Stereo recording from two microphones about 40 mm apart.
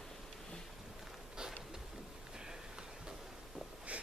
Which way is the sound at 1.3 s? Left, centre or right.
Centre.